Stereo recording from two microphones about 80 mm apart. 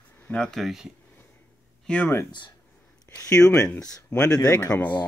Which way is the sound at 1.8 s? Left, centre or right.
Centre.